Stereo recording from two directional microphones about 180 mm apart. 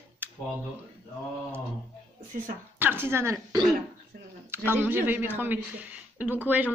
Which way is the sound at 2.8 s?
10° right (ahead or behind).